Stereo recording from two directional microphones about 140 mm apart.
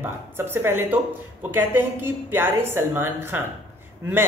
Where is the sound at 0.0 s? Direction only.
15° right (ahead or behind).